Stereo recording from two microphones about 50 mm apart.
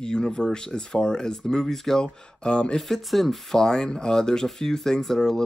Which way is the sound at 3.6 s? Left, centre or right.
Centre.